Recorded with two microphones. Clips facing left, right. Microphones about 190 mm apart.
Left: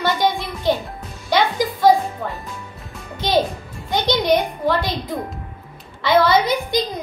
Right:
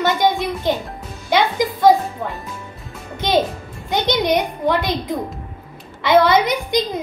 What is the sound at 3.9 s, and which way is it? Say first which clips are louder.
A woman's voice: even; 20° right (ahead or behind).